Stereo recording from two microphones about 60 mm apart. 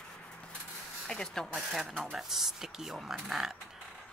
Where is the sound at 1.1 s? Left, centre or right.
Centre.